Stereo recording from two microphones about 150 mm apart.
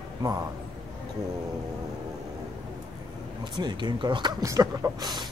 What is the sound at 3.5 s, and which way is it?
Speech, 30° right (ahead or behind).